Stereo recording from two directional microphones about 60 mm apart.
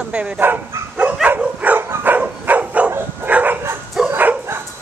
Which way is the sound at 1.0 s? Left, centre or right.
Right.